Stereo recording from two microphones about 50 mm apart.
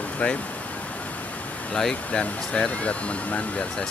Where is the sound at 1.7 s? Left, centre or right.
Centre.